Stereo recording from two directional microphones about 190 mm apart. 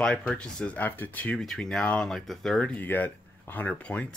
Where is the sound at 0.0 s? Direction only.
5° left (ahead or behind).